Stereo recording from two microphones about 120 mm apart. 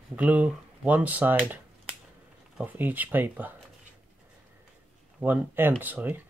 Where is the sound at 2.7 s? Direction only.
15° right (ahead or behind).